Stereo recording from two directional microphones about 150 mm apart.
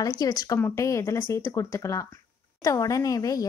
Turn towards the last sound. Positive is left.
turn(degrees=25)  # may be behind; listen again after turning